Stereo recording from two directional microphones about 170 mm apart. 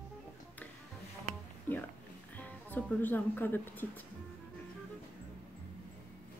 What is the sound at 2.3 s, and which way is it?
Speech, 10° left (ahead or behind).